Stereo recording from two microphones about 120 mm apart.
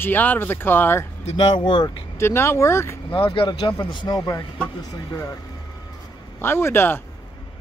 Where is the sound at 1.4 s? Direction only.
40° left (ahead or behind).